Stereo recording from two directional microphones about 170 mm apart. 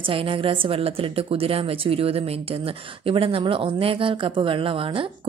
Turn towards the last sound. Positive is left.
turn(degrees=-30)  # may be behind; listen again after turning